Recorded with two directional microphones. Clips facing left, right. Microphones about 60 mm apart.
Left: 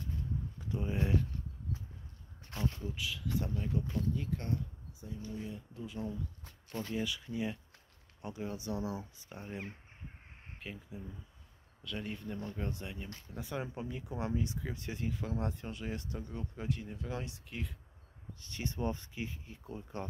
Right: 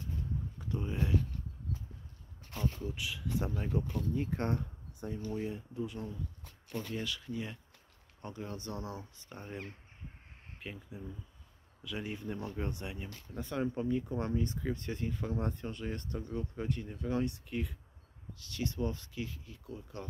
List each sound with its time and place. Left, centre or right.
0.6 s speech: centre
2.8 s speech: centre
3.4 s speech: right
4.1 s speech: right
4.6 s a sound: right
5.3 s speech: right
5.8 s speech: centre
18.4 s speech: left